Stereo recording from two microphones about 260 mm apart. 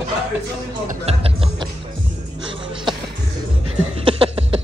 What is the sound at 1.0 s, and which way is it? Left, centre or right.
Speech, right.